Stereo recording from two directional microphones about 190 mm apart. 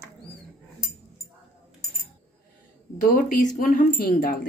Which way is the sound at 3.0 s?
50° left (ahead or behind).